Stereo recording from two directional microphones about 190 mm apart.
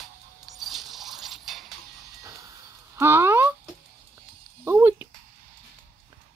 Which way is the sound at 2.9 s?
10° right (ahead or behind).